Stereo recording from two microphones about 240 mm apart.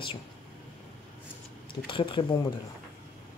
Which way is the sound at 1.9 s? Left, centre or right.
Left.